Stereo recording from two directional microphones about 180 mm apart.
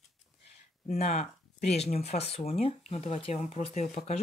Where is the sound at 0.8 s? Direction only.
35° left (ahead or behind).